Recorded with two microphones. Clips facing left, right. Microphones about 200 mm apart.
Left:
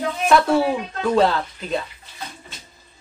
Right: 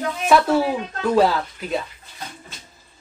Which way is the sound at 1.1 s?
5° right (ahead or behind).